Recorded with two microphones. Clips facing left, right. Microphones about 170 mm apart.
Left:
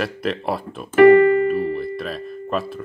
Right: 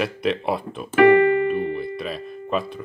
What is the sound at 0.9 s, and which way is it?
Speech, 45° left (ahead or behind).